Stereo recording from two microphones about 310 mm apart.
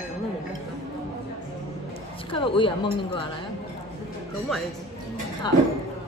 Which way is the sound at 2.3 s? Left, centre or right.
Centre.